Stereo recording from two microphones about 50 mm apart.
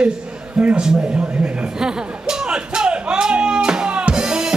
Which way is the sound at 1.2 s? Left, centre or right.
Right.